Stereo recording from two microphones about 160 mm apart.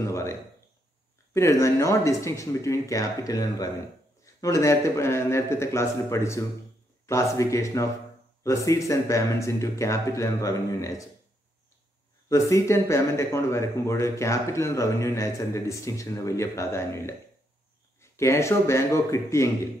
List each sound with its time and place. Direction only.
0.0 s a sound: 15° left (ahead or behind)
1.3 s speech: 20° left (ahead or behind)
12.3 s speech: 20° left (ahead or behind)